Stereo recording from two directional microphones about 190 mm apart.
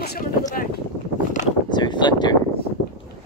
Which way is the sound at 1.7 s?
25° left (ahead or behind).